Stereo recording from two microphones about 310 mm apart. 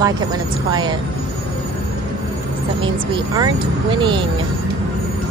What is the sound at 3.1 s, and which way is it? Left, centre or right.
Speech, centre.